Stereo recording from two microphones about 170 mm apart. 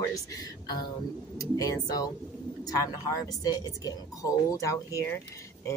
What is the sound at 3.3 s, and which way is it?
Speech, 20° left (ahead or behind).